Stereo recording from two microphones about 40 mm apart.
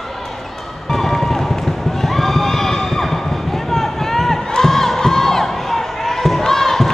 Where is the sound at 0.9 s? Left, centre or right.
Centre.